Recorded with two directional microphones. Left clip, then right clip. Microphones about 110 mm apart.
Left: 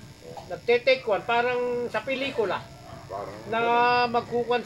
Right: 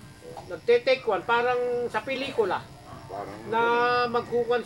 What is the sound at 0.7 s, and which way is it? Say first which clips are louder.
A man's voice: even; 25° right (ahead or behind).